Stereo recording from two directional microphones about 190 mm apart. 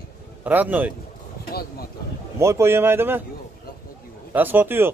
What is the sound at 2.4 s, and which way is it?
Speech, 15° right (ahead or behind).